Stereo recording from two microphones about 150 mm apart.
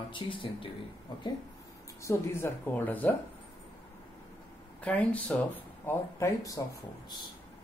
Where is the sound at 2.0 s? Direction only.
20° left (ahead or behind).